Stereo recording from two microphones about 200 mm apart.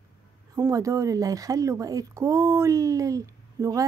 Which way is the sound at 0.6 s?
15° right (ahead or behind).